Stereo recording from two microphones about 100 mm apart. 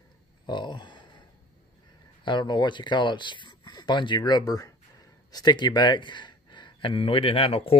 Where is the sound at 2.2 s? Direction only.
50° left (ahead or behind); by 7.8 s 75° left (ahead or behind).